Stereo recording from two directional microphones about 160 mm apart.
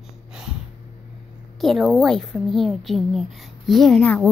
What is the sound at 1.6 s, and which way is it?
A woman's voice, centre (ahead or behind).